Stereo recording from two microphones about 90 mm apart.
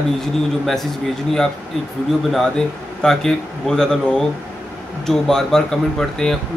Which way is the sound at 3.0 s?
5° left (ahead or behind).